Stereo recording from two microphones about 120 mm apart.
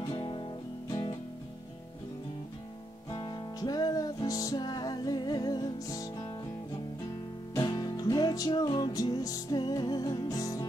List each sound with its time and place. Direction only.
0.1 s music: 40° left (ahead or behind)
3.1 s music: 35° left (ahead or behind)
7.5 s music: 35° left (ahead or behind)